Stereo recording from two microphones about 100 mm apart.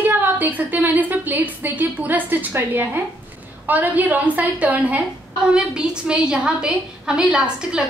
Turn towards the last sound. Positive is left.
turn(degrees=-10)  # may be behind; listen again after turning